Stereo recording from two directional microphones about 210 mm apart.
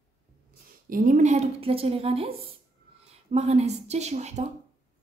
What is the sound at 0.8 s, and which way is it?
A woman's voice, 40° right (ahead or behind).